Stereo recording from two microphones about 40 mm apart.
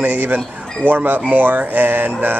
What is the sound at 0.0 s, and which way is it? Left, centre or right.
Speech, right.